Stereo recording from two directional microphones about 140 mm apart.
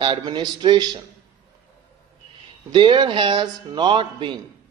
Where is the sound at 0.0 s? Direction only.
35° right (ahead or behind).